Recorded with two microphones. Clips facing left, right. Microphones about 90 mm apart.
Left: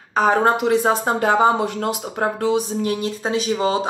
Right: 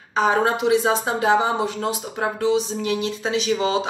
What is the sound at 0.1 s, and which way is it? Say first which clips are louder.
Speech: left 3 dB; 50° left (ahead or behind).